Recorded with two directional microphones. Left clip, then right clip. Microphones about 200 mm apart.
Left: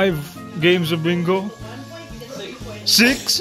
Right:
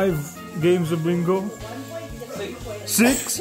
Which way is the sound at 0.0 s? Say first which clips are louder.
Left 3 dB; 5° left (ahead or behind).